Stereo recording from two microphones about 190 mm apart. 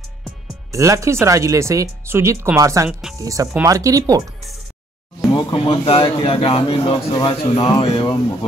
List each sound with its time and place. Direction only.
0.7 s speech: 15° right (ahead or behind)
2.9 s speech: 5° right (ahead or behind)
3.2 s speech: 15° right (ahead or behind)
5.3 s a man's voice: 25° left (ahead or behind)